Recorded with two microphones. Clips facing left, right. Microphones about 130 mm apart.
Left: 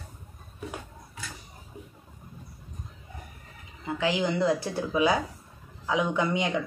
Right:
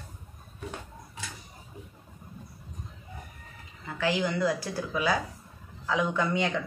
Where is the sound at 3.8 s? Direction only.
20° left (ahead or behind).